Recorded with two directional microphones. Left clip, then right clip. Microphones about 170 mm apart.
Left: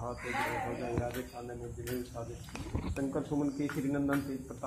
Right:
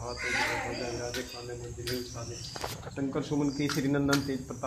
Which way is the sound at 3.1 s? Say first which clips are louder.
Right 4 dB; 40° right (ahead or behind).